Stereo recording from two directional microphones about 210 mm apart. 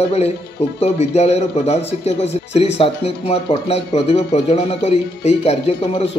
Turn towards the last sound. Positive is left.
turn(degrees=30)  # may be behind; listen again after turning